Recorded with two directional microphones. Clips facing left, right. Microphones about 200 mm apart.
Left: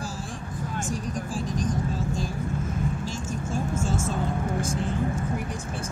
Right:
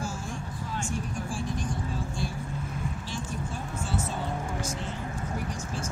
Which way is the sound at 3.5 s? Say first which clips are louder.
Left 8 dB; 45° left (ahead or behind).